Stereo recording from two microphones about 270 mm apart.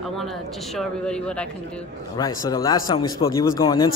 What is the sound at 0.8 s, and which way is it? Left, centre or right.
Speech, centre.